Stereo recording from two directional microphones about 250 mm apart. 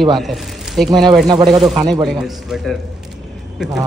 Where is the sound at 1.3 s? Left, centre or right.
Centre.